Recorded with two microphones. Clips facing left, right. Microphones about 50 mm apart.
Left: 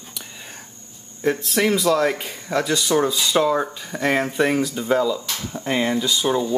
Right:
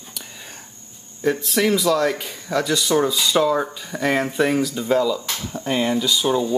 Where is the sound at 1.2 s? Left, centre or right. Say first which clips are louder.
Even; centre.